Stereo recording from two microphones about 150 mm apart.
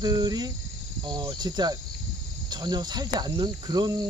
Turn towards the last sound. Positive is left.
turn(degrees=-25)  # may be behind; listen again after turning